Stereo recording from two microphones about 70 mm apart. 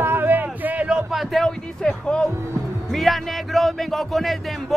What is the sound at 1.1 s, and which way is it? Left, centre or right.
Speech, centre.